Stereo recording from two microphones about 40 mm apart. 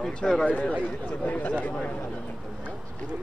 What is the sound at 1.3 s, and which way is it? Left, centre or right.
Speech, left.